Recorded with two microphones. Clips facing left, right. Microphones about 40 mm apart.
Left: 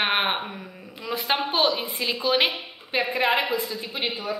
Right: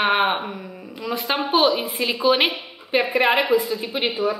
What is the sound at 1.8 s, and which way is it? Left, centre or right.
A woman's voice, centre.